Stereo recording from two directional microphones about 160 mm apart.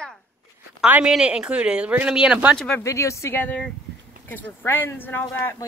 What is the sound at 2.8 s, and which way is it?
A woman's voice, 20° left (ahead or behind).